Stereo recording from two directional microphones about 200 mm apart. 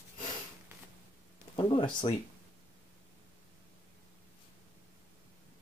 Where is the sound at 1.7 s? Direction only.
25° left (ahead or behind).